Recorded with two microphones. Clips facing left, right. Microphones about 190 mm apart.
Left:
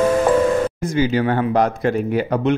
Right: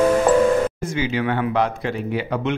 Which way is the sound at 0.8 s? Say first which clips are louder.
Left 5 dB; 40° left (ahead or behind).